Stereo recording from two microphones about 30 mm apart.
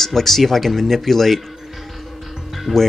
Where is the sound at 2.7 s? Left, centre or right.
Right.